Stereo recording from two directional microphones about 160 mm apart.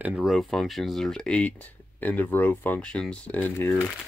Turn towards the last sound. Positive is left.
turn(degrees=10)  # may be behind; listen again after turning